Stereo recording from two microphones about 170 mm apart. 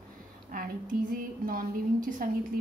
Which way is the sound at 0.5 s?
55° right (ahead or behind).